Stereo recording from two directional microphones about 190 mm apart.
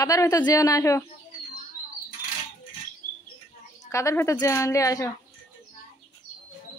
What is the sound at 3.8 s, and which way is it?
A woman's voice, 15° left (ahead or behind).